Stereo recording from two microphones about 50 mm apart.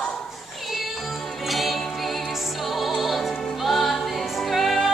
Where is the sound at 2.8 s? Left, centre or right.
Centre.